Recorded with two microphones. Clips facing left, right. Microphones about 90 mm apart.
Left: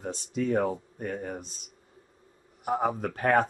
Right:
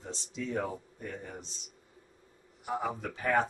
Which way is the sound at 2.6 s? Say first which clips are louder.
Left 6 dB; 50° left (ahead or behind).